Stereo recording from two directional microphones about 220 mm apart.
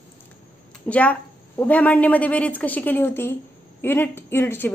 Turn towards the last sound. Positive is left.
turn(degrees=10)  # may be behind; listen again after turning